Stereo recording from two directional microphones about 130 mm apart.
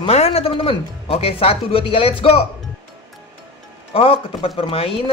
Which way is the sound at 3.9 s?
45° left (ahead or behind).